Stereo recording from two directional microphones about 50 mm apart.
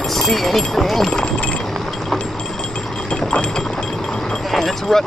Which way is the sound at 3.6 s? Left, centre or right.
Centre.